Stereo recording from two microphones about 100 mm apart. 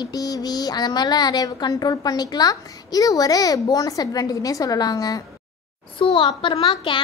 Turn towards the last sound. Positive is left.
turn(degrees=65)  # may be behind; listen again after turning